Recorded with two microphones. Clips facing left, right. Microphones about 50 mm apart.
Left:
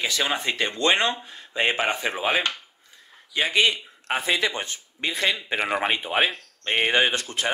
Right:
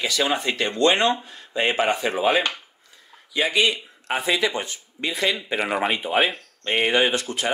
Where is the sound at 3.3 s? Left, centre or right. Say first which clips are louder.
Right 1 dB; left.